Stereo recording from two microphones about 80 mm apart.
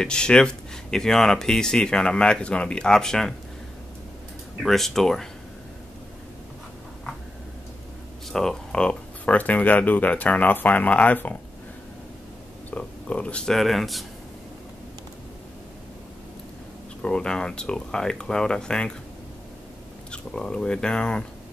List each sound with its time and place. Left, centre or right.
0.0 s speech: centre
4.6 s speech: centre
8.3 s speech: centre
12.7 s speech: centre
17.0 s speech: centre
20.1 s speech: centre